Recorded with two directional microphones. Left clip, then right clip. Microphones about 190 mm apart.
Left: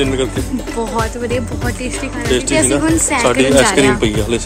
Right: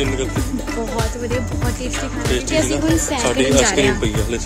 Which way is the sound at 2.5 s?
20° right (ahead or behind).